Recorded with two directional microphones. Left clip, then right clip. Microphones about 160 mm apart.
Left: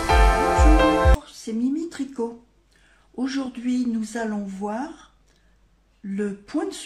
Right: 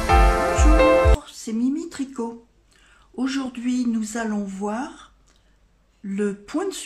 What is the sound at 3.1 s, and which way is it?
Speech, 20° right (ahead or behind).